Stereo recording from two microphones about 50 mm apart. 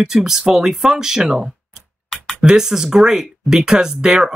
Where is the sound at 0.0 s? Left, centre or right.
Centre.